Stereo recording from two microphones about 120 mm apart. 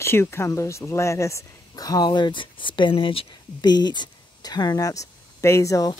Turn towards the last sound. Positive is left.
turn(degrees=30)  # may be behind; listen again after turning